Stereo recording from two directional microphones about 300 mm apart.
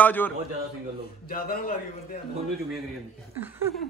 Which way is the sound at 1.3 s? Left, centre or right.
Left.